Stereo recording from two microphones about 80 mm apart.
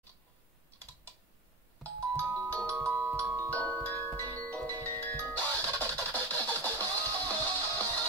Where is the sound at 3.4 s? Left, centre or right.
Centre.